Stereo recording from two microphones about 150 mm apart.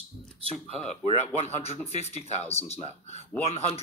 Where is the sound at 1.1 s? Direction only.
45° left (ahead or behind).